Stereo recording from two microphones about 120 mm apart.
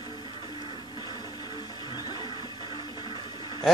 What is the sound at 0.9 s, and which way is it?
Music, 35° left (ahead or behind).